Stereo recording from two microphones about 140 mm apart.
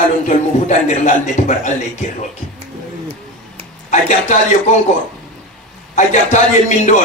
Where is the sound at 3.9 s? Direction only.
60° left (ahead or behind).